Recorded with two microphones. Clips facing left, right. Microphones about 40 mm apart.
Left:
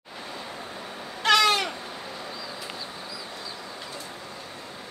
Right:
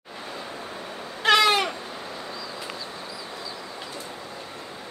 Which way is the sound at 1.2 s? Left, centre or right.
Centre.